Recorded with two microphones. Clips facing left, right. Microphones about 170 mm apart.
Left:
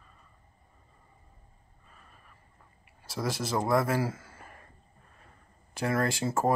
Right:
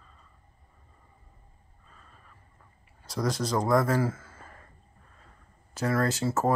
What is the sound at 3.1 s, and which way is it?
Speech, 5° left (ahead or behind).